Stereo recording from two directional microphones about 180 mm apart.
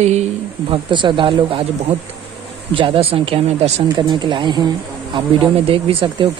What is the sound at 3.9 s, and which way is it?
Speech, 25° right (ahead or behind).